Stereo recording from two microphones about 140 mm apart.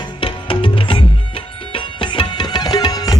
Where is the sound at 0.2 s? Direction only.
40° left (ahead or behind).